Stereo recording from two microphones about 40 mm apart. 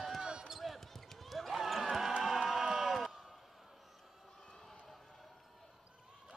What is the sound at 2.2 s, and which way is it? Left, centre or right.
Crowd, centre.